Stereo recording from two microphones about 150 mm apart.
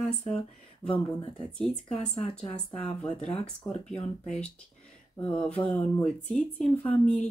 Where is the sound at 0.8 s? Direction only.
5° left (ahead or behind).